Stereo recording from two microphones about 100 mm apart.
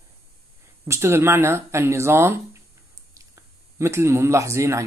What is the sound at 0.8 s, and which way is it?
Speech, 30° right (ahead or behind).